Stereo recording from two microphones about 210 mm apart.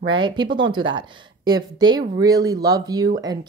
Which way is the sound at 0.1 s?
20° right (ahead or behind).